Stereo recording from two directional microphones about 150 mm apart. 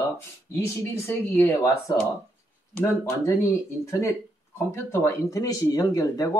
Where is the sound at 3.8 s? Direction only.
20° left (ahead or behind).